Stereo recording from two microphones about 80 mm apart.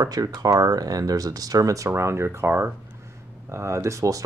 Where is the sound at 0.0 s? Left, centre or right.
Right.